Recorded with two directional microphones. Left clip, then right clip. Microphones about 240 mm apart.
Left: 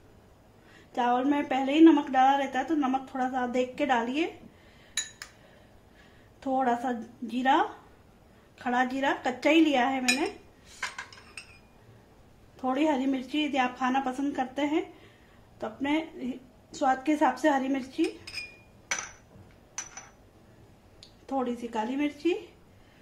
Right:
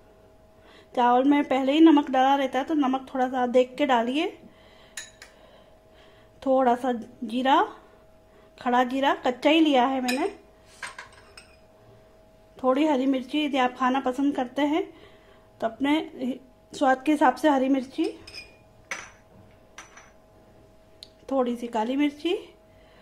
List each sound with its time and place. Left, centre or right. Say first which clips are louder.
0.9 s a woman's voice: right 6 dB; right
6.4 s a woman's voice: right 6 dB; right
12.5 s a woman's voice: right 5 dB; right
21.3 s a woman's voice: right 5 dB; right